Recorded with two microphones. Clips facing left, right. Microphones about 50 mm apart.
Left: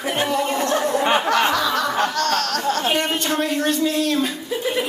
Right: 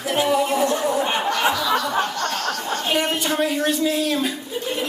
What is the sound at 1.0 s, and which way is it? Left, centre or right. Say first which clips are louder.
Snicker: left 4 dB; left.